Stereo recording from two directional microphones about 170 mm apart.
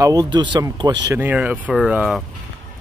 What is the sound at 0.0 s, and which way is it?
Speech, 25° right (ahead or behind).